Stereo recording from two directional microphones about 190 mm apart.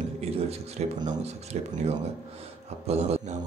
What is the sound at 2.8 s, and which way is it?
Speech, 35° right (ahead or behind).